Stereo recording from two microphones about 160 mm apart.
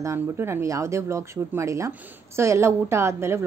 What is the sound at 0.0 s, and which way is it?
Speech, 15° right (ahead or behind).